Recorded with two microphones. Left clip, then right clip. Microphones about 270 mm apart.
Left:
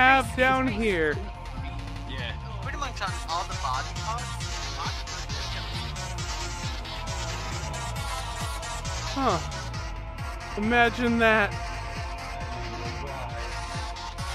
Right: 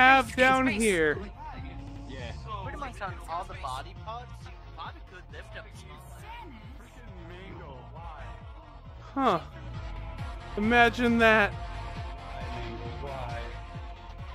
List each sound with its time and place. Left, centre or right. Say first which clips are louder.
0.0 s speech: even; centre
3.3 s music: left 6 dB; left
9.2 s speech: even; centre
10.7 s speech: even; centre